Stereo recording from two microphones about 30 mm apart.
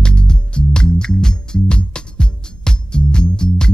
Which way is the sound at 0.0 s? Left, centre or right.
Left.